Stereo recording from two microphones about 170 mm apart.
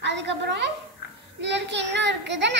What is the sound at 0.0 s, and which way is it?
A woman's voice, 90° right.